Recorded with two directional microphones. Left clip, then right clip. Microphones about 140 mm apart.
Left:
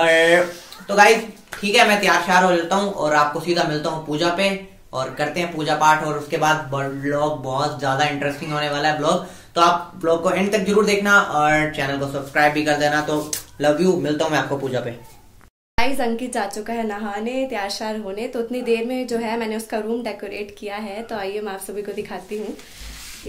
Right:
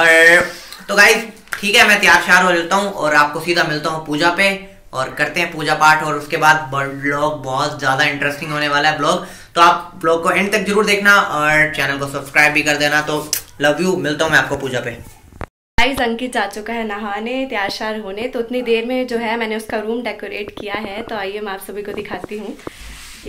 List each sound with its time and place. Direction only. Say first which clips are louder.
0.0 s speech: right 6 dB; 25° left (ahead or behind)
1.5 s speech: right 4 dB; 25° left (ahead or behind)
15.7 s a woman's voice: right 5 dB; 5° left (ahead or behind)